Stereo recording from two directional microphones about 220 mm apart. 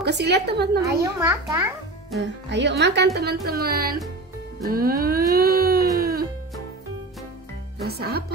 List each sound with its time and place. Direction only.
0.0 s a woman's voice: 50° right (ahead or behind)
0.8 s a child's voice: 15° right (ahead or behind)
2.5 s a woman's voice: 50° right (ahead or behind)
4.6 s a sound: 40° right (ahead or behind)
5.9 s music: 45° right (ahead or behind)
7.8 s a woman's voice: 45° right (ahead or behind)